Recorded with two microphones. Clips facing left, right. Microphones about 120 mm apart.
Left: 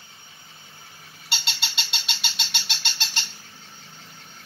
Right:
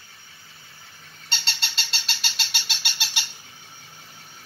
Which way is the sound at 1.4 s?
Centre (ahead or behind).